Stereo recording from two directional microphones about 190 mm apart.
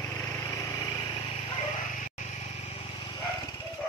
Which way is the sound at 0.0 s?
15° left (ahead or behind).